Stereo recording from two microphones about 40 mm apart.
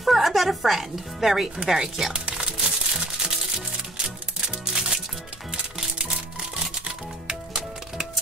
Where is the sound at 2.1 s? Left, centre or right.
Centre.